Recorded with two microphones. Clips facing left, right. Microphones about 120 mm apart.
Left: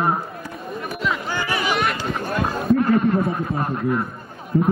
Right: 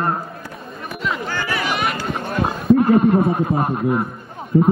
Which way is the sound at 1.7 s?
Centre (ahead or behind).